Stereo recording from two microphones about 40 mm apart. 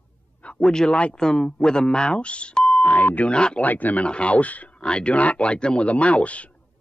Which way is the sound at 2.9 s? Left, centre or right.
Left.